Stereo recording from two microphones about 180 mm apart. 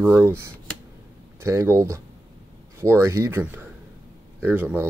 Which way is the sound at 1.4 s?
15° right (ahead or behind).